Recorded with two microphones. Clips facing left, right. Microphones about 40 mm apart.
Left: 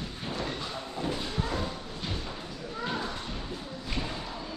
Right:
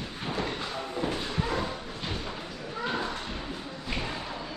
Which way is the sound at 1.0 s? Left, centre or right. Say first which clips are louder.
Right 1 dB; right.